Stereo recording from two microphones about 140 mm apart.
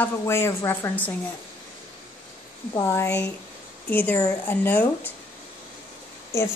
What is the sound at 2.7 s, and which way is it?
Speech, 20° left (ahead or behind).